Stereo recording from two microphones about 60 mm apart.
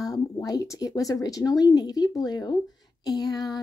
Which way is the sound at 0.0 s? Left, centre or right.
Left.